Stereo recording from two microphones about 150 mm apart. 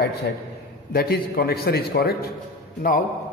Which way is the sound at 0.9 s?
90° left.